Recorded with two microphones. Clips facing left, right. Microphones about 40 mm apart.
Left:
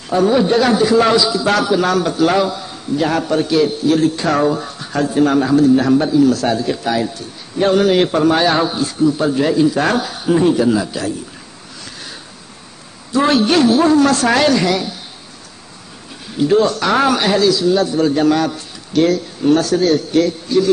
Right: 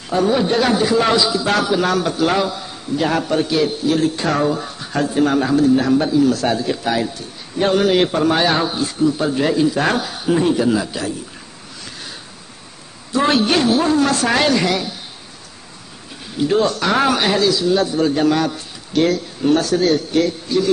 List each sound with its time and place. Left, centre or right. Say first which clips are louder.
0.1 s a man's voice: left 3 dB; centre
1.1 s speech: left 2 dB; right
1.4 s a man's voice: left 2 dB; centre
4.3 s speech: left 3 dB; centre
4.6 s a man's voice: left 2 dB; centre
8.6 s a man's voice: left 2 dB; centre
10.8 s a man's voice: left 2 dB; centre
13.3 s a man's voice: left 3 dB; centre
16.5 s a man's voice: left 3 dB; centre
17.9 s a man's voice: left 2 dB; centre